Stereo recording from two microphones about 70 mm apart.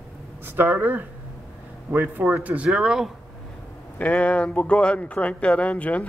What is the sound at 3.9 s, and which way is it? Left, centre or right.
Speech, left.